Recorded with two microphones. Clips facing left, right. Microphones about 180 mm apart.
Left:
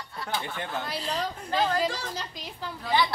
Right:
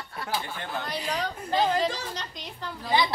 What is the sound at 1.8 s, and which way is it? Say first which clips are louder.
Speech: right 1 dB; 5° left (ahead or behind).